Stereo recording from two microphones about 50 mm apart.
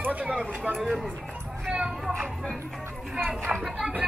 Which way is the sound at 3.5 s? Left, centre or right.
Right.